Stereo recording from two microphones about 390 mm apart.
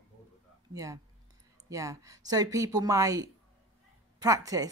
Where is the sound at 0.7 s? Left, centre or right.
Centre.